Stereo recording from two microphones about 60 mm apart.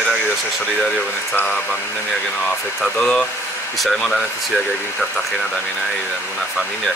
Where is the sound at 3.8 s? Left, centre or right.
Centre.